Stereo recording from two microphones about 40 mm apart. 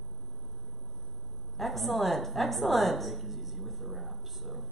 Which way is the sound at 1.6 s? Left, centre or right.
Centre.